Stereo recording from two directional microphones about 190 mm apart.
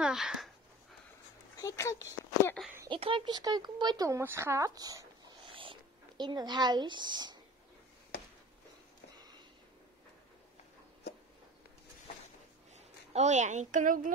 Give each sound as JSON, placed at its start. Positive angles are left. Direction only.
{"t": 0.0, "sound": "speech", "side_deg": -5}
{"t": 1.6, "sound": "speech", "side_deg": 15}
{"t": 2.9, "sound": "speech", "side_deg": -25}
{"t": 5.5, "sound": "a sound", "side_deg": -30}
{"t": 12.7, "sound": "speech", "side_deg": -35}